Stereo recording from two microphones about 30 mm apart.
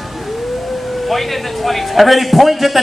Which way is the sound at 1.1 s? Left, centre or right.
Centre.